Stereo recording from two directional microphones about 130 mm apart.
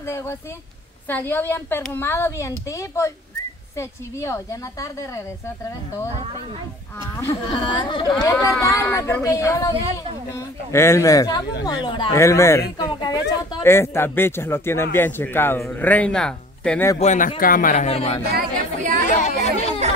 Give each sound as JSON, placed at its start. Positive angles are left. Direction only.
{"t": 1.0, "sound": "a man's voice", "side_deg": 15}
{"t": 3.7, "sound": "speech", "side_deg": 20}
{"t": 7.5, "sound": "speech", "side_deg": 35}
{"t": 12.1, "sound": "speech", "side_deg": 25}
{"t": 13.7, "sound": "a man's voice", "side_deg": 20}
{"t": 17.0, "sound": "speech", "side_deg": 70}
{"t": 17.4, "sound": "speech", "side_deg": 90}
{"t": 17.8, "sound": "speech", "side_deg": 50}
{"t": 18.8, "sound": "speech", "side_deg": -90}
{"t": 19.1, "sound": "children playing", "side_deg": 65}